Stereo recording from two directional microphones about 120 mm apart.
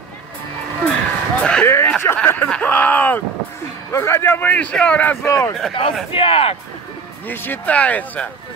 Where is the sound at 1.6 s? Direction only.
20° left (ahead or behind).